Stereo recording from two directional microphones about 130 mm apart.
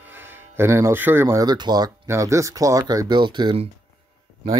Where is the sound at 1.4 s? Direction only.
35° right (ahead or behind).